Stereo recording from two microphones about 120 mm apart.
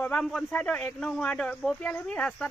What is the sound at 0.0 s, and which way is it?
A man's voice, 5° left (ahead or behind).